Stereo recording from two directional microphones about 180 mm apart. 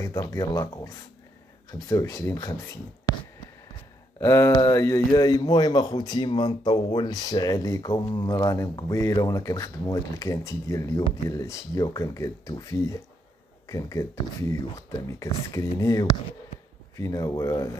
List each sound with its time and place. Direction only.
0.0 s speech: 20° left (ahead or behind)
4.2 s speech: 15° left (ahead or behind)